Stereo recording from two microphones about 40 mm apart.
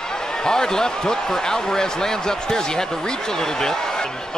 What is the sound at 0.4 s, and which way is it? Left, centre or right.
Speech, centre.